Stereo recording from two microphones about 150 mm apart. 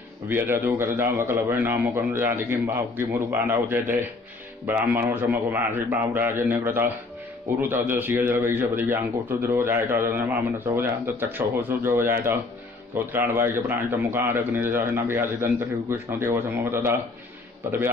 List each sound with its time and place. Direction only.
0.3 s a man's voice: 15° right (ahead or behind)